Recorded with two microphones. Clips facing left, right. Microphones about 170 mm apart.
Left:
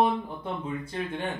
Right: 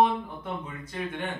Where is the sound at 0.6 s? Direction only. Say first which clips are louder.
Left 3 dB; 25° left (ahead or behind).